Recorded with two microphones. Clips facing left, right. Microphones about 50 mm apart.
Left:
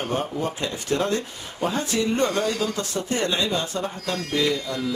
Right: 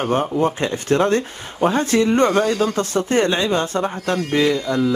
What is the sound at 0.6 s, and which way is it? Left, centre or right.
Speech, right.